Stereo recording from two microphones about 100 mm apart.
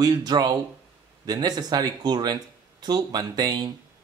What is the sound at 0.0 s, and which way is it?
Speech, 40° right (ahead or behind).